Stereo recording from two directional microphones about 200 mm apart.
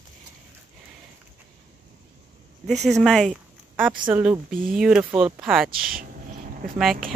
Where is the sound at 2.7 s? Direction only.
Centre (ahead or behind).